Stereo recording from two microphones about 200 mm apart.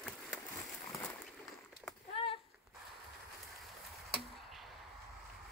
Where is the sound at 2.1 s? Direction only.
30° left (ahead or behind).